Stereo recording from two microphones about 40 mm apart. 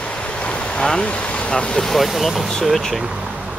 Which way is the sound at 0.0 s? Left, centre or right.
Left.